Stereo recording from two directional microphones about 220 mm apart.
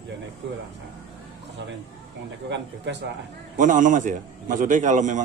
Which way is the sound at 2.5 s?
50° right (ahead or behind).